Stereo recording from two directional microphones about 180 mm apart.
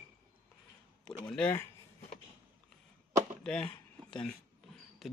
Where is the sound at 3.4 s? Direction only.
5° left (ahead or behind).